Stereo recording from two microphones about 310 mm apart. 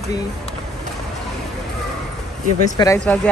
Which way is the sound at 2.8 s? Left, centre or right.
Centre.